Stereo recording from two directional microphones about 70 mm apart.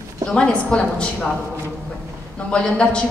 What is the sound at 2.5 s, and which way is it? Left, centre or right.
Speech, centre.